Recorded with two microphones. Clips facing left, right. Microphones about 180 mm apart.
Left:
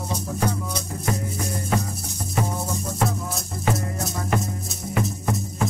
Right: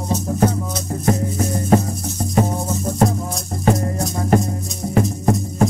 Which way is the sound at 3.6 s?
40° right (ahead or behind).